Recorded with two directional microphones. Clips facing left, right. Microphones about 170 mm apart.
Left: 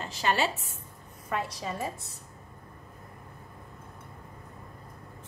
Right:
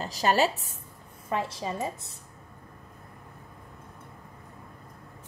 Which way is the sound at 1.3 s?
25° right (ahead or behind).